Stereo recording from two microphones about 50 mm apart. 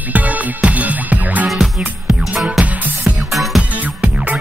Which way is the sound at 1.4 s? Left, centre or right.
Centre.